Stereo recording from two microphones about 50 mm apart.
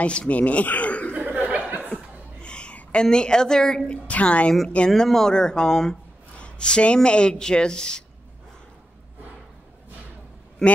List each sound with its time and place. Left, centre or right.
0.0 s speech: left
1.1 s chuckle: right
2.4 s a woman's voice: left
4.1 s a woman's voice: left
4.7 s speech: centre
10.6 s a man's voice: centre